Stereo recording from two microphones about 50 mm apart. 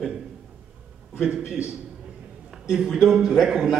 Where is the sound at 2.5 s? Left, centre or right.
Centre.